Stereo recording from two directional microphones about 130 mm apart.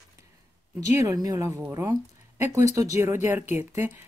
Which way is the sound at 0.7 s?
25° right (ahead or behind).